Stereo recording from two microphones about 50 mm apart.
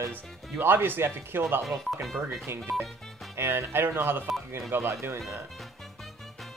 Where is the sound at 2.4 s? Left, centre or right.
Right.